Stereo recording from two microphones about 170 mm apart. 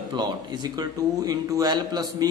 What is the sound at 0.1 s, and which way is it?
A man's voice, 25° right (ahead or behind).